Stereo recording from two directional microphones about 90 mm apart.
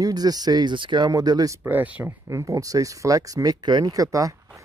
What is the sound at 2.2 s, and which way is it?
Speech, 35° right (ahead or behind).